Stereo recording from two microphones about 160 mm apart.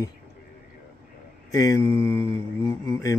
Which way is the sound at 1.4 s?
20° left (ahead or behind).